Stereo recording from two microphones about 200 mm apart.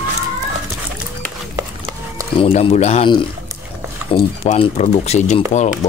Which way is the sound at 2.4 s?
30° left (ahead or behind).